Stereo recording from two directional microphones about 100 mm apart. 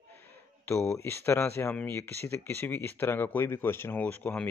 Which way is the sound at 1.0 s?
25° left (ahead or behind).